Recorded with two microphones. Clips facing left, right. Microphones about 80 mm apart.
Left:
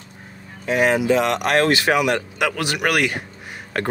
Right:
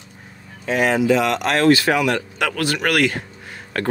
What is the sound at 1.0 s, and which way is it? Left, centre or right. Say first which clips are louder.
Speech: right 1 dB; left.